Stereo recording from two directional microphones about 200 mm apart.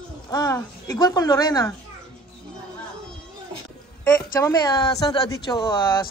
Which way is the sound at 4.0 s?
15° left (ahead or behind).